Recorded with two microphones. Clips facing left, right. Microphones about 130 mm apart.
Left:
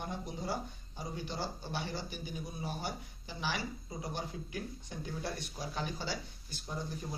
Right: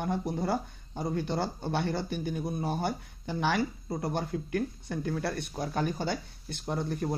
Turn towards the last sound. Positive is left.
turn(degrees=-65)  # may be behind; listen again after turning